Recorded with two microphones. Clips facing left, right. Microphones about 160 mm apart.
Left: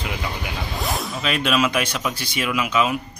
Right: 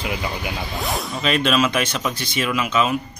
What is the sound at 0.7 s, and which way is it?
Speech, centre (ahead or behind).